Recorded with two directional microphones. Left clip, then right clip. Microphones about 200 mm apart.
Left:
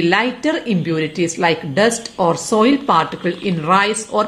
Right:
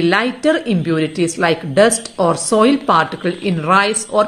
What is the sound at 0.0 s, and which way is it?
A woman's voice, 15° right (ahead or behind).